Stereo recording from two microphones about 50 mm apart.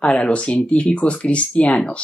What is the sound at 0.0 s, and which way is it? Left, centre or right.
Speech, left.